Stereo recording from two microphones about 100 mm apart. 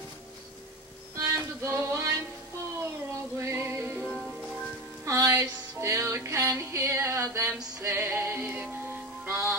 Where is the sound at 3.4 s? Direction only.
25° right (ahead or behind).